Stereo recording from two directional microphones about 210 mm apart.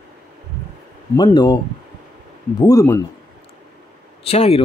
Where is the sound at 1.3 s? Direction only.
20° left (ahead or behind).